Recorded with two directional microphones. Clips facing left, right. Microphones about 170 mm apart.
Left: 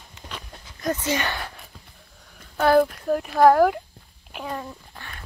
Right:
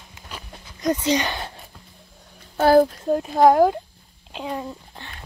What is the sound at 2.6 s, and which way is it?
Speech, 30° right (ahead or behind).